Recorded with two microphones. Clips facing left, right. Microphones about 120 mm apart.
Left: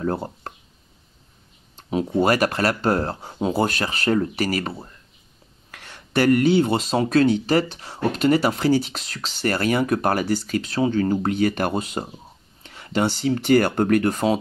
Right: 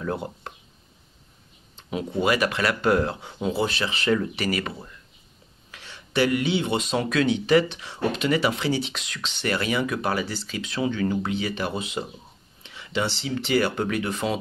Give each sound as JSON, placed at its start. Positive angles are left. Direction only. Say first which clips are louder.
{"t": 0.0, "sound": "speech", "louder": "left 4 dB", "side_deg": 40}
{"t": 1.8, "sound": "speech", "louder": "left 6 dB", "side_deg": 40}
{"t": 5.7, "sound": "speech", "louder": "left 3 dB", "side_deg": 50}